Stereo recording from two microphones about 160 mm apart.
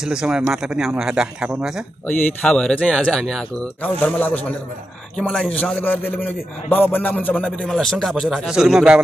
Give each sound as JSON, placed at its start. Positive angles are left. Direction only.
{"t": 0.0, "sound": "a man's voice", "side_deg": -5}
{"t": 2.0, "sound": "a man's voice", "side_deg": 5}